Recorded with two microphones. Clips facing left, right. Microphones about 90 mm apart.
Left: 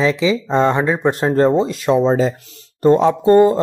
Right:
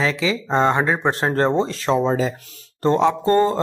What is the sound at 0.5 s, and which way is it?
Speech, 20° right (ahead or behind).